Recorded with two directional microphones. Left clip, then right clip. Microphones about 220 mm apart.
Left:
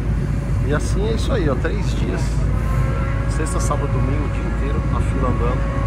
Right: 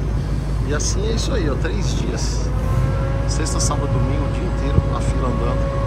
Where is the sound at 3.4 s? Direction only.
40° right (ahead or behind).